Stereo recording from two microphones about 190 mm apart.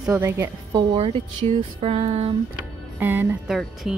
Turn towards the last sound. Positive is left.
turn(degrees=0)  # may be behind; listen again after turning